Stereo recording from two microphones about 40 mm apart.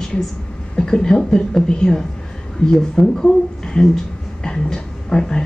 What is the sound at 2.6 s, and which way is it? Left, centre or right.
Speech, left.